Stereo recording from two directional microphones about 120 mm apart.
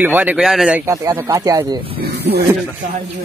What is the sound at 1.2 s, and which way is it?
Speech, 30° right (ahead or behind).